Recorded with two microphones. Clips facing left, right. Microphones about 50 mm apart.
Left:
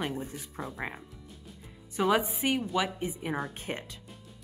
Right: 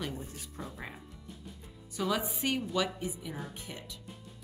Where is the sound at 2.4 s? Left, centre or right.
Centre.